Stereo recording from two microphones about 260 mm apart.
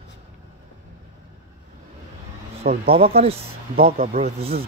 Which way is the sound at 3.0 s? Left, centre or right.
Right.